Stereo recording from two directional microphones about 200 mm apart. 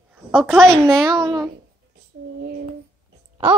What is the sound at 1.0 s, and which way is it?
Speech, 20° right (ahead or behind).